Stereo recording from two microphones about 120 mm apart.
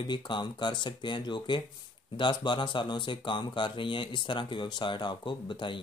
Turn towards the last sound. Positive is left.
turn(degrees=40)  # may be behind; listen again after turning